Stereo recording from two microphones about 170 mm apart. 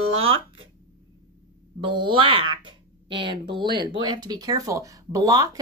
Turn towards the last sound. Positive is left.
turn(degrees=-20)  # may be behind; listen again after turning